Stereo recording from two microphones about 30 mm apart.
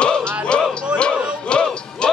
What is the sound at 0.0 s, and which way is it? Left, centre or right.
Music, left.